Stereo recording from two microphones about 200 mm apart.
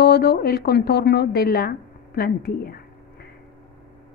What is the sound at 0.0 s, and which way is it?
A woman's voice, 55° left (ahead or behind).